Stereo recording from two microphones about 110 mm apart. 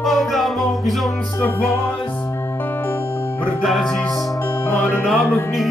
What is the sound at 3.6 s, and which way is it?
Music, centre (ahead or behind).